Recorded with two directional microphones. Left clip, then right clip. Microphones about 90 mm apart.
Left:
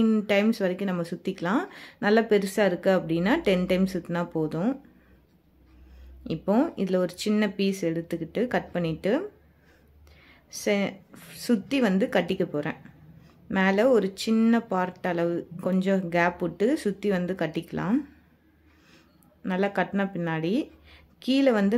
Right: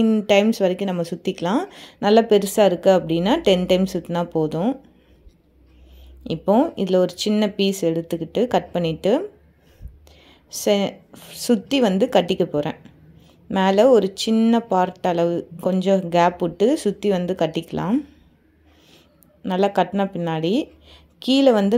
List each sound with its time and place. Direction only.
0.3 s a woman's voice: 35° right (ahead or behind)
6.2 s a woman's voice: 40° right (ahead or behind)
10.2 s a sound: 35° right (ahead or behind)
11.1 s a woman's voice: 35° right (ahead or behind)
13.6 s a woman's voice: 35° right (ahead or behind)
19.4 s a woman's voice: 35° right (ahead or behind)